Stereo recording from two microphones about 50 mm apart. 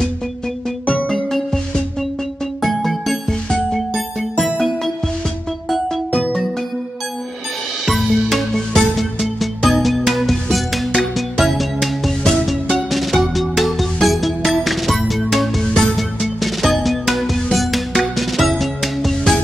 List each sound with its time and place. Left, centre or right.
1.0 s music: centre
2.6 s music: centre
7.8 s music: centre
15.6 s music: centre
16.0 s music: centre